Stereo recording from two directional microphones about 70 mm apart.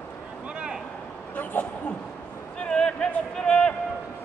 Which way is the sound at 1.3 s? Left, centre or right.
Left.